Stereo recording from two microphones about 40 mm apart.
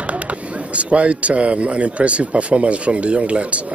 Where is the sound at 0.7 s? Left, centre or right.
Right.